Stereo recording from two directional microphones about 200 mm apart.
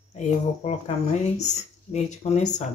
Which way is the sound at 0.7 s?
35° left (ahead or behind).